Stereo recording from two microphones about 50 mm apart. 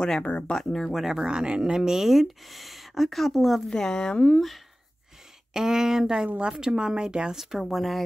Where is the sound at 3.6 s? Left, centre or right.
Centre.